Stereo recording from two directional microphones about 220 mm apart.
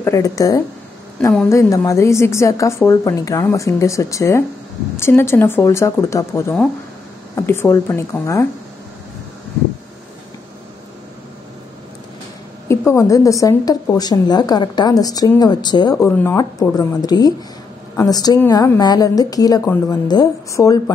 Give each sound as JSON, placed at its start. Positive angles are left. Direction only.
{"t": 0.0, "sound": "speech", "side_deg": 15}
{"t": 12.6, "sound": "speech", "side_deg": 15}